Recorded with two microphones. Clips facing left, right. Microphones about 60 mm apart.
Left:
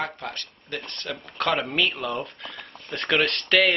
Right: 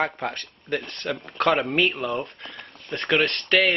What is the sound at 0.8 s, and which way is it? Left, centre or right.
Speech, centre.